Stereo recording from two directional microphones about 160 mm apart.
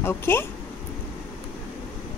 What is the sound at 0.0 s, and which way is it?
Speech, 15° left (ahead or behind).